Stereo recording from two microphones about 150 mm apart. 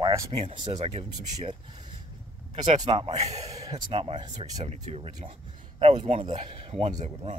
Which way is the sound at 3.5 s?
25° right (ahead or behind).